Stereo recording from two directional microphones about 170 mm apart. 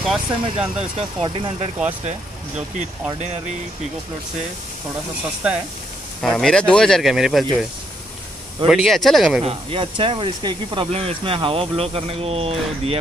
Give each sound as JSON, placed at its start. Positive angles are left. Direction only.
{"t": 0.0, "sound": "speech", "side_deg": 0}
{"t": 0.7, "sound": "speech", "side_deg": -35}
{"t": 6.2, "sound": "speech", "side_deg": 5}
{"t": 8.6, "sound": "speech", "side_deg": 0}
{"t": 9.4, "sound": "speech", "side_deg": -35}